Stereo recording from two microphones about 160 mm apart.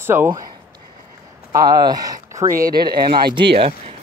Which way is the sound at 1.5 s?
25° right (ahead or behind).